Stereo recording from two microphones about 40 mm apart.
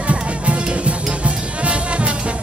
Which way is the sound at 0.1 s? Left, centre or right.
Right.